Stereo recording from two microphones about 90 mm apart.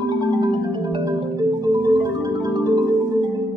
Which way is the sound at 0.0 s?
50° right (ahead or behind).